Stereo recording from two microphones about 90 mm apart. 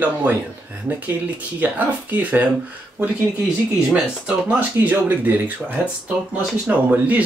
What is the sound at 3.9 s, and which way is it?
Speech, 10° right (ahead or behind).